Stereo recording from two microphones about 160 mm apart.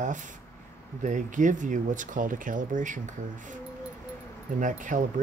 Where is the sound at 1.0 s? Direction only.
50° right (ahead or behind).